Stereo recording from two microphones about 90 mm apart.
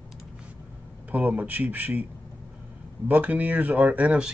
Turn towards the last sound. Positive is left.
turn(degrees=-15)  # may be behind; listen again after turning